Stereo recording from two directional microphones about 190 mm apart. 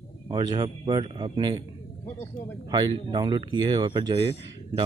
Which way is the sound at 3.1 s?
20° right (ahead or behind).